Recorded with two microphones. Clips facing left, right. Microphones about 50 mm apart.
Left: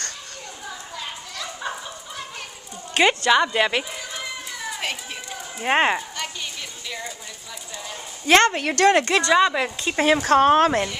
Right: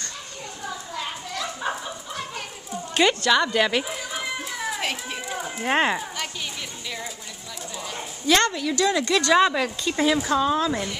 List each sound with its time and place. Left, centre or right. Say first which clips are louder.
0.9 s children playing: right 4 dB; centre
2.9 s a sound: left 2 dB; left
3.5 s speech: even; centre
3.9 s children playing: right 2 dB; centre
5.6 s speech: left 3 dB; centre
8.3 s speech: left 4 dB; left
9.2 s speech: left 1 dB; centre
9.8 s speech: left 4 dB; left